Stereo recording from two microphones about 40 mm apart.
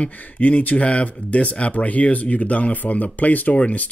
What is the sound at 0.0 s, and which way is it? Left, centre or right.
Speech, left.